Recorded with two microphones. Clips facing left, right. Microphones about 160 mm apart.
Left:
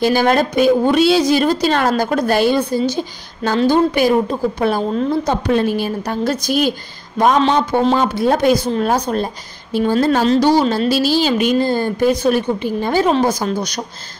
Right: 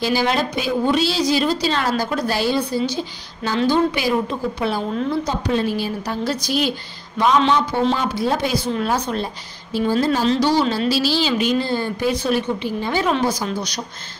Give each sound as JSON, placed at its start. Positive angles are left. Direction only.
{"t": 0.0, "sound": "a woman's voice", "side_deg": 50}
{"t": 9.8, "sound": "a woman's voice", "side_deg": 55}